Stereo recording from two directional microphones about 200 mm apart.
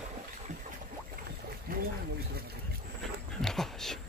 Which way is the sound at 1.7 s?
45° right (ahead or behind).